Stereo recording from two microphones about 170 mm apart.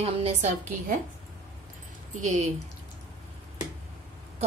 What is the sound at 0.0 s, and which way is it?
Speech, 40° right (ahead or behind).